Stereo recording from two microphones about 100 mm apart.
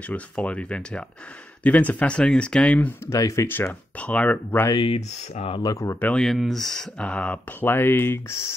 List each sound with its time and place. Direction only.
0.0 s speech: 15° left (ahead or behind)
3.1 s speech: 30° left (ahead or behind)
3.4 s speech: 20° left (ahead or behind)
4.7 s speech: 65° left (ahead or behind); by 5.6 s 80° left
5.6 s speech: 35° left (ahead or behind)
6.1 s speech: centre (ahead or behind); by 8.4 s 20° left (ahead or behind)